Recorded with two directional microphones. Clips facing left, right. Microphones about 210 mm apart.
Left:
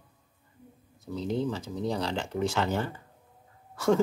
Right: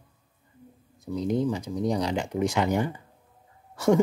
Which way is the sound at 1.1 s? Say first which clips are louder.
Right 4 dB; 15° right (ahead or behind).